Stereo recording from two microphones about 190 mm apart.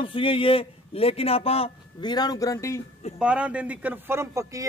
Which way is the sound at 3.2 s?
5° right (ahead or behind).